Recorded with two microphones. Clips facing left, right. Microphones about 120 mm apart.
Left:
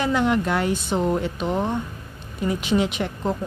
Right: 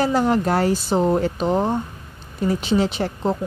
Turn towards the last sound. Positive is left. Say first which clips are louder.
# right 3 dB
turn(degrees=-35)  # may be behind; listen again after turning